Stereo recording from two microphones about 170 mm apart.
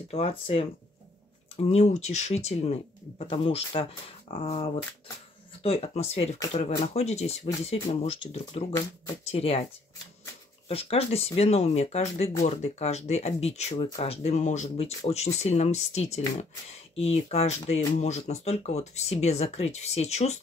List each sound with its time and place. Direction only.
0.1 s speech: 35° left (ahead or behind)
10.7 s speech: 35° left (ahead or behind)